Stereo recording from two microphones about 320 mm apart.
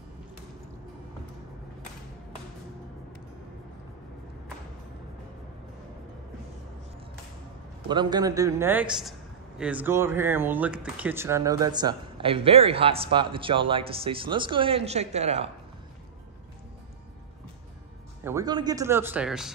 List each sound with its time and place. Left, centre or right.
7.9 s speech: centre
18.2 s speech: centre